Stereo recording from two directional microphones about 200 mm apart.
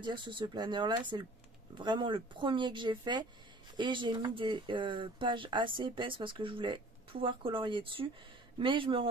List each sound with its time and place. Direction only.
0.0 s speech: 25° right (ahead or behind)